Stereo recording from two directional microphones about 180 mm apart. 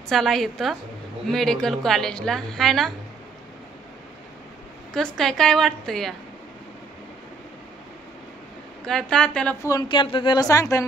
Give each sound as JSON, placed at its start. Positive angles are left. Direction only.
{"t": 0.1, "sound": "a woman's voice", "side_deg": 0}
{"t": 4.9, "sound": "a woman's voice", "side_deg": 0}
{"t": 8.8, "sound": "a woman's voice", "side_deg": 5}
{"t": 9.7, "sound": "a woman's voice", "side_deg": 25}